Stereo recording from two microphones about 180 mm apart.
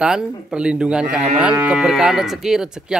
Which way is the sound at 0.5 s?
5° right (ahead or behind).